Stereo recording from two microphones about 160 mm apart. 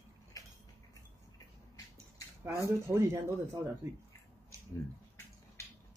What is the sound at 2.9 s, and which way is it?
Speech, 15° right (ahead or behind).